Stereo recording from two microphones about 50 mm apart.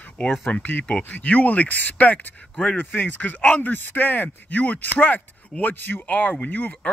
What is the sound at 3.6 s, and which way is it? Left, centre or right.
Speech, left.